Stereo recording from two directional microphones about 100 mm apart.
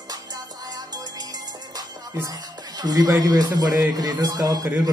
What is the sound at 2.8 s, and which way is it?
Speech, 40° right (ahead or behind).